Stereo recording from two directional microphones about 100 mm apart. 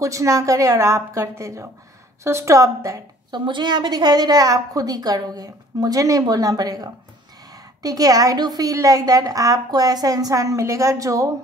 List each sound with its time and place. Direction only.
0.0 s a woman's voice: 30° right (ahead or behind)
3.3 s a woman's voice: 50° right (ahead or behind); by 11.3 s 35° right (ahead or behind)